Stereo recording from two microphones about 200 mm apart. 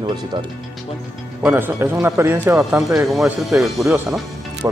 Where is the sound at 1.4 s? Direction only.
10° right (ahead or behind).